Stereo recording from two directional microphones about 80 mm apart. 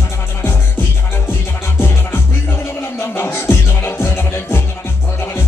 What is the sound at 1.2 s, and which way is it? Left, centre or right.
Music, left.